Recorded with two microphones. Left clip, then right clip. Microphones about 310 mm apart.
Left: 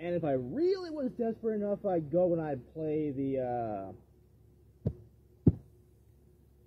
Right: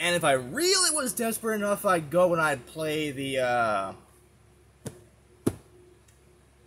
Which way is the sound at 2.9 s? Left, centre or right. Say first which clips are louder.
Right 2 dB; right.